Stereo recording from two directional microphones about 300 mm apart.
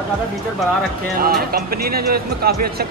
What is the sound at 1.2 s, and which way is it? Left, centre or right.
Speech, right.